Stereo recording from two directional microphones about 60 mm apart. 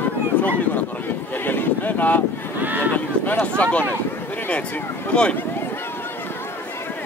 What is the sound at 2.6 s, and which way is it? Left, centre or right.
Speech, right.